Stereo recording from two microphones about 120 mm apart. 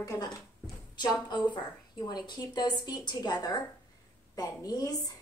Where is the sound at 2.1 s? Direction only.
35° left (ahead or behind).